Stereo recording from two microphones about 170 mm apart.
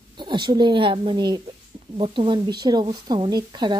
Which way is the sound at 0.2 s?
25° right (ahead or behind).